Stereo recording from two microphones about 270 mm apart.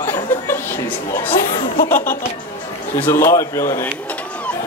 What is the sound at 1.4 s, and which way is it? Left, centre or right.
Speech, left.